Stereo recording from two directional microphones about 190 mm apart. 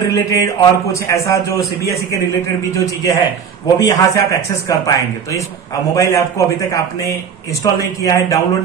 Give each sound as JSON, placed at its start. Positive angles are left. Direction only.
{"t": 0.1, "sound": "a man's voice", "side_deg": 15}
{"t": 2.8, "sound": "a man's voice", "side_deg": 15}